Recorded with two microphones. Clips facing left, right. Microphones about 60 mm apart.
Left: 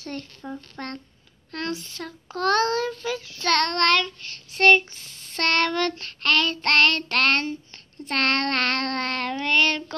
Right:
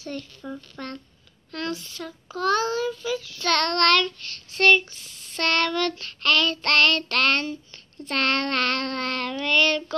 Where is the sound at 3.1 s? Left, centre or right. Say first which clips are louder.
Left 2 dB; left.